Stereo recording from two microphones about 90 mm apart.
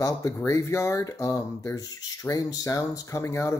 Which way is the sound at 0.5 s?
35° left (ahead or behind).